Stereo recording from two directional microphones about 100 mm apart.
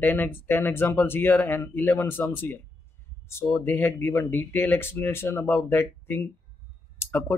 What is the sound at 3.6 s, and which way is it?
Speech, 20° left (ahead or behind).